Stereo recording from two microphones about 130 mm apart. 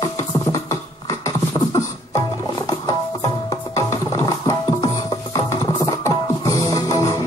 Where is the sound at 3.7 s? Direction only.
25° left (ahead or behind).